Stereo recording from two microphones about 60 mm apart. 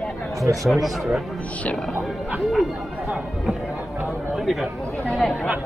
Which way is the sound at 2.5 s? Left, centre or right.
Centre.